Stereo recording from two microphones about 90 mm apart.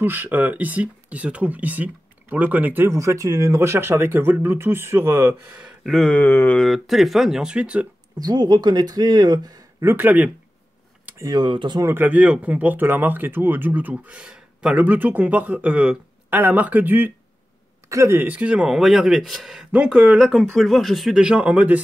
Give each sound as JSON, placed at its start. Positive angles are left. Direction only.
{"t": 0.0, "sound": "speech", "side_deg": -20}
{"t": 3.0, "sound": "speech", "side_deg": -35}
{"t": 5.6, "sound": "a sound", "side_deg": -10}
{"t": 5.9, "sound": "a sound", "side_deg": 10}
{"t": 6.2, "sound": "mantra", "side_deg": 20}
{"t": 6.6, "sound": "speech", "side_deg": 0}
{"t": 8.2, "sound": "speech", "side_deg": -50}
{"t": 9.8, "sound": "speech", "side_deg": -25}
{"t": 11.3, "sound": "speech", "side_deg": -60}
{"t": 11.8, "sound": "speech", "side_deg": -25}
{"t": 17.8, "sound": "speech", "side_deg": -35}
{"t": 18.2, "sound": "speech", "side_deg": -15}
{"t": 20.2, "sound": "speech", "side_deg": 0}